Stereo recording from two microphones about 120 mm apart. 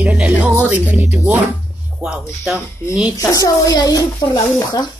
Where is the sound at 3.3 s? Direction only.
30° left (ahead or behind).